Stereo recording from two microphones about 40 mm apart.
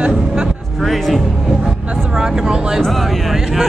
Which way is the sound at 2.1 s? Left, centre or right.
Centre.